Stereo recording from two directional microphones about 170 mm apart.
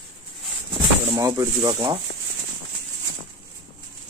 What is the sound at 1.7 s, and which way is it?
Speech, 25° right (ahead or behind).